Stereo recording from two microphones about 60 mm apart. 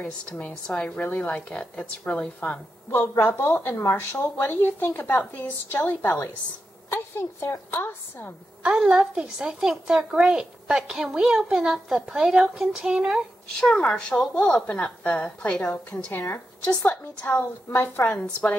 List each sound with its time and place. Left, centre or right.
0.3 s a woman's voice: left
1.5 s a woman's voice: centre
3.3 s a woman's voice: left
9.0 s a woman's voice: centre
13.6 s a woman's voice: centre
15.6 s a woman's voice: left
16.6 s a woman's voice: left
17.7 s a woman's voice: left
18.2 s a woman's voice: left